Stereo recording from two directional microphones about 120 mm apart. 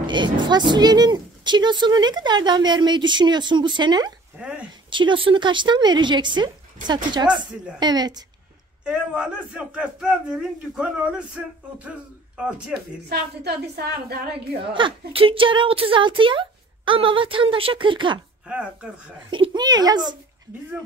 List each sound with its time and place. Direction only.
0.0 s a woman's voice: 40° right (ahead or behind)
8.8 s a man's voice: 10° right (ahead or behind)
12.4 s a man's voice: 10° right (ahead or behind)
14.7 s speech: 45° right (ahead or behind)
18.5 s a man's voice: 10° right (ahead or behind)
19.3 s a woman's voice: 40° right (ahead or behind)